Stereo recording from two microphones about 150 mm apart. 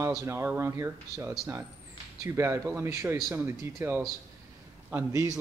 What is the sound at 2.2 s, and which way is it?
Speech, 15° right (ahead or behind).